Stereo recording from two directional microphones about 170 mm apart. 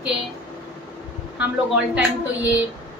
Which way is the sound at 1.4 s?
5° right (ahead or behind).